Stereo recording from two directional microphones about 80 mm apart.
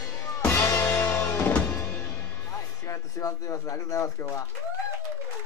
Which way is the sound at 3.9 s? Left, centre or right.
Left.